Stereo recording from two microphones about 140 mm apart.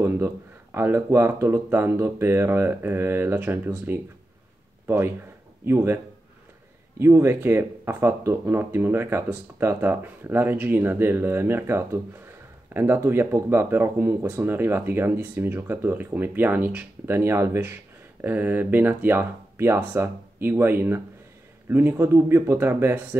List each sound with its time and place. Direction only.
0.0 s speech: 15° right (ahead or behind)
7.0 s speech: 20° right (ahead or behind)